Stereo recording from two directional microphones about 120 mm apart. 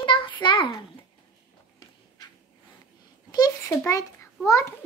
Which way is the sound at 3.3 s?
30° left (ahead or behind).